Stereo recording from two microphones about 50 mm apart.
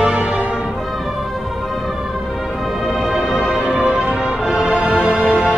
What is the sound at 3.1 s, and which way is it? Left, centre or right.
Music, centre.